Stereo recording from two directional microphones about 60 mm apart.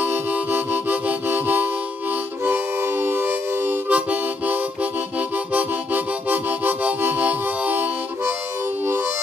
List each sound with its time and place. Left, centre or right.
0.0 s music: right
2.4 s harmonica: right
5.5 s music: right